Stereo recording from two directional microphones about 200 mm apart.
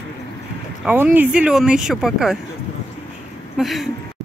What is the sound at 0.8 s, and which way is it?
Speech, 10° right (ahead or behind).